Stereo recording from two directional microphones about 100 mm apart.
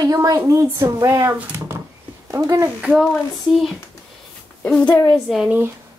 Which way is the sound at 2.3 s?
30° right (ahead or behind).